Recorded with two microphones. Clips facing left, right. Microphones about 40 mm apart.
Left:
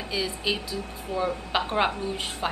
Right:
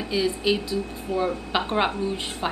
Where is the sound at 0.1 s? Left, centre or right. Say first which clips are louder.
Right 5 dB; centre.